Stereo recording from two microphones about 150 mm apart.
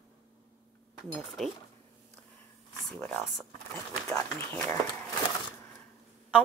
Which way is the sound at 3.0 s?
5° left (ahead or behind).